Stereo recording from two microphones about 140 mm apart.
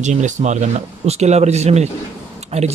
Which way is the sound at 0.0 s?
60° right (ahead or behind).